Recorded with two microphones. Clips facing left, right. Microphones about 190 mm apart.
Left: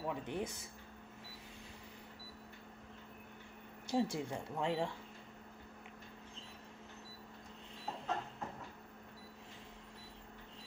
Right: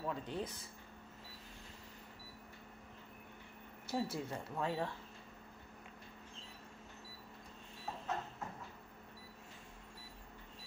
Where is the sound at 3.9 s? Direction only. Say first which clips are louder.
Left 3 dB; 15° left (ahead or behind).